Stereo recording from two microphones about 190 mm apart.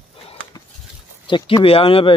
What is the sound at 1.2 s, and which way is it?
Speech, 25° left (ahead or behind).